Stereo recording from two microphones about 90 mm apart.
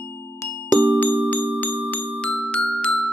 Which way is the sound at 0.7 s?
15° left (ahead or behind).